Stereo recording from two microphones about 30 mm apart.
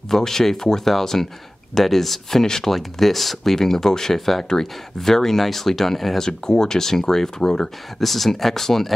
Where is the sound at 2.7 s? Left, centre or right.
Centre.